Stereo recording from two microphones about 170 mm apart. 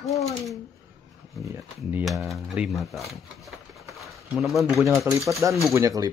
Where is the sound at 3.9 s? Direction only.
Centre (ahead or behind).